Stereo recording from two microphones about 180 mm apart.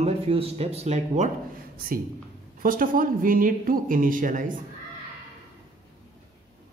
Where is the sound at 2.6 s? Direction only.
50° right (ahead or behind).